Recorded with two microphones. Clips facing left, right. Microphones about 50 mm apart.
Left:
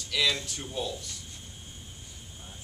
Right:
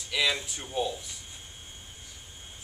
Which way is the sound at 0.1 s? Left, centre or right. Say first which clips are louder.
Even; centre.